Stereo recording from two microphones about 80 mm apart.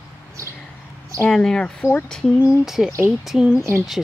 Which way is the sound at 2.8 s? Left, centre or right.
Centre.